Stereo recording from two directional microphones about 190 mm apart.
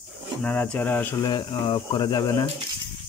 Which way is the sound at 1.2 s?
25° left (ahead or behind).